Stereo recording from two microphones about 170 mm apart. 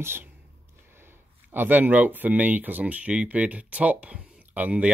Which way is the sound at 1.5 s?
10° right (ahead or behind).